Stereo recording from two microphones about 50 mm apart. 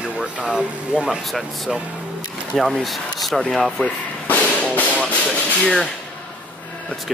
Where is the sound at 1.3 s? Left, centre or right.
Centre.